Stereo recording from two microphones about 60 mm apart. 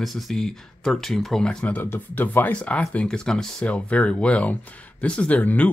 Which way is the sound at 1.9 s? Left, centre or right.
Left.